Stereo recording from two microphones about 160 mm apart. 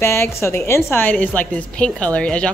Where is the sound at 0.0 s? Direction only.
15° left (ahead or behind).